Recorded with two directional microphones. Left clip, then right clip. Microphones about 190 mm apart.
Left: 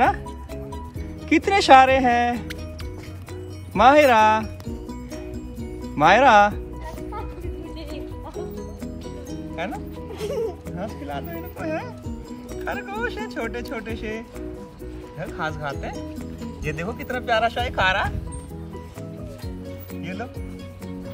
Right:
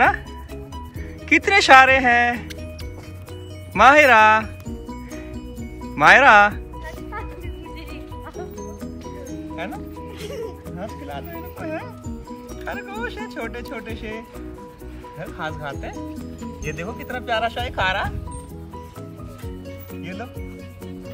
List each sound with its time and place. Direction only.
1.3 s speech: 10° left (ahead or behind)
3.7 s speech: 10° left (ahead or behind)
5.9 s speech: 10° left (ahead or behind)
10.2 s music: 35° left (ahead or behind)
10.8 s speech: 5° left (ahead or behind)
20.0 s music: centre (ahead or behind)